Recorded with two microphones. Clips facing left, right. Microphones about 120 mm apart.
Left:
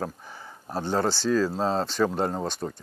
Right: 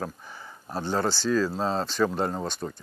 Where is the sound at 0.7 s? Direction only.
35° left (ahead or behind).